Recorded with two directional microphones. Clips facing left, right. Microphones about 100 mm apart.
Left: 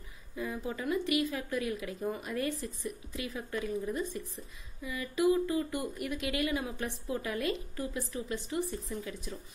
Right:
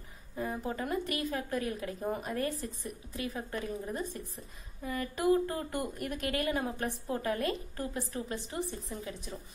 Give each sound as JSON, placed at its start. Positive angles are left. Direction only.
{"t": 0.4, "sound": "a woman's voice", "side_deg": -40}